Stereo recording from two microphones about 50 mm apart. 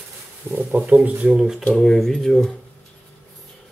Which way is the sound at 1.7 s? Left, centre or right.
Centre.